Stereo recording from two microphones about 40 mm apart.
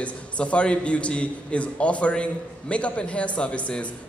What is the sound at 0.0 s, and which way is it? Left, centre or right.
A man's voice, left.